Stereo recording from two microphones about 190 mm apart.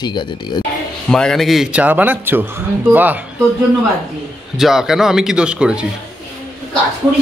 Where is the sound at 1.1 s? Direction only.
5° left (ahead or behind).